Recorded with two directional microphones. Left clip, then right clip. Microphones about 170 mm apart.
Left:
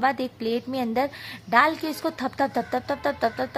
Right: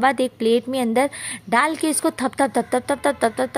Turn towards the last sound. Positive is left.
turn(degrees=-30)  # may be behind; listen again after turning